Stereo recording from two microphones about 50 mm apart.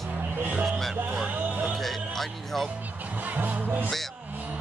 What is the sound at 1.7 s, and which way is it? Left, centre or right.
Music, centre.